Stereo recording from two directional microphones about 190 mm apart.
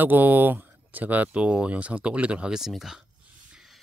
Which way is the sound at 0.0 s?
10° right (ahead or behind).